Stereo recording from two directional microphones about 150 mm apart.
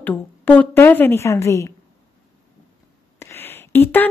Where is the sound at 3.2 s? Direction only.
15° left (ahead or behind).